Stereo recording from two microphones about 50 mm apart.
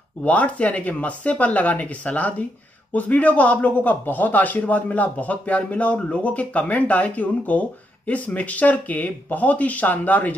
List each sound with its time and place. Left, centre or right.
0.2 s speech: left